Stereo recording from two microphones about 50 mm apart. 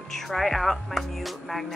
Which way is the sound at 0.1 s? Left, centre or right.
Centre.